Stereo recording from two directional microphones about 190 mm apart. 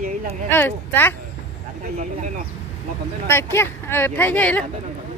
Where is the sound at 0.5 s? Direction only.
10° left (ahead or behind).